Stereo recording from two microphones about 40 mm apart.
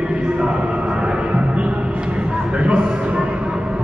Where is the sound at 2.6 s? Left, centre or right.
Right.